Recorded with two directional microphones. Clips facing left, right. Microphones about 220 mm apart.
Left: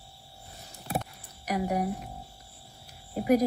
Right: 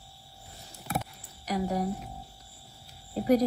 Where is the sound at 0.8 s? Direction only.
15° left (ahead or behind).